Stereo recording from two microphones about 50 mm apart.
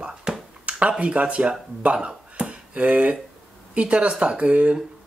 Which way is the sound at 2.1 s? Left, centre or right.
Right.